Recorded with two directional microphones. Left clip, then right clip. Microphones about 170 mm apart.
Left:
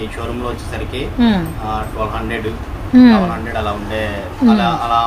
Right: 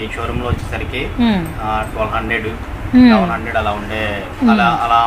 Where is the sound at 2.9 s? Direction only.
10° left (ahead or behind).